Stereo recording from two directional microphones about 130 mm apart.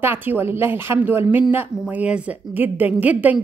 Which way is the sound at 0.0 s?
15° right (ahead or behind).